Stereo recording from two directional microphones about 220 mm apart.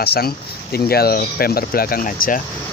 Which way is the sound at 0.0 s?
45° left (ahead or behind).